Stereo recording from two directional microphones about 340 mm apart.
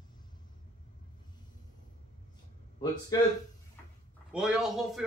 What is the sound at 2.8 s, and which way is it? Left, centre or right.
Speech, centre.